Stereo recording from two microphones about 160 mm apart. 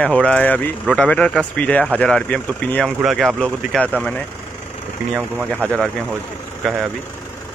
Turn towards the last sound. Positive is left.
turn(degrees=0)  # may be behind; listen again after turning